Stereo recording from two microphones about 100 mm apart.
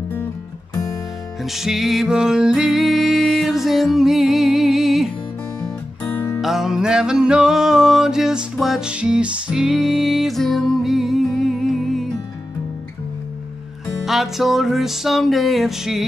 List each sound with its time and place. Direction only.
1.4 s music: 5° right (ahead or behind)
6.0 s music: 20° left (ahead or behind)
6.4 s music: 5° right (ahead or behind)
14.0 s music: centre (ahead or behind)